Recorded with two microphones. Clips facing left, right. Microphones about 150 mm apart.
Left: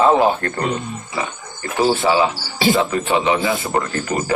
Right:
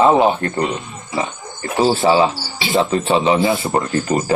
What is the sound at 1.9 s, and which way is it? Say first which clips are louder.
A man's voice: right 3 dB; 30° right (ahead or behind).